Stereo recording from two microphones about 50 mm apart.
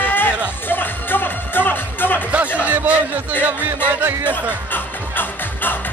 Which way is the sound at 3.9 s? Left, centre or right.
Right.